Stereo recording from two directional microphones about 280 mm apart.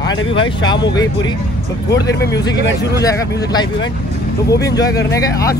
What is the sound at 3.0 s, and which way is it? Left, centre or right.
Speech, centre.